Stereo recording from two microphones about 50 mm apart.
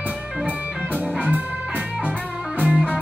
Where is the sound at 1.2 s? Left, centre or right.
Right.